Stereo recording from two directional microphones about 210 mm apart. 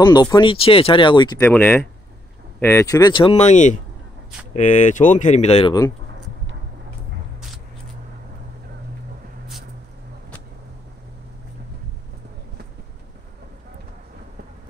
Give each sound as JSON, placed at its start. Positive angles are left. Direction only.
{"t": 0.0, "sound": "speech", "side_deg": 20}
{"t": 1.4, "sound": "speech", "side_deg": 10}
{"t": 7.3, "sound": "a sound", "side_deg": 0}